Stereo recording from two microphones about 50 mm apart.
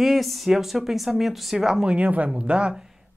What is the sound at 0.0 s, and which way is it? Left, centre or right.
Speech, centre.